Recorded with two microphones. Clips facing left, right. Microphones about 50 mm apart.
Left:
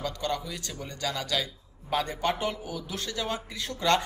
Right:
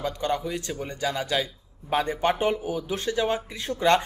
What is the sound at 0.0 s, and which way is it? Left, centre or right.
A man's voice, right.